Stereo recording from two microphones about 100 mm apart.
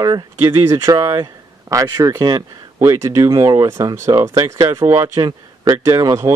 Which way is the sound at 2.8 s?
30° right (ahead or behind).